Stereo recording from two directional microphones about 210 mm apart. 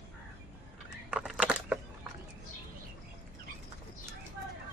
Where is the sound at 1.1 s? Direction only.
5° right (ahead or behind).